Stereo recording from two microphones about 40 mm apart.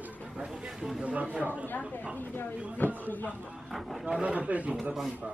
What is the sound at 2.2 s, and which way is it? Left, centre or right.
Speech, left.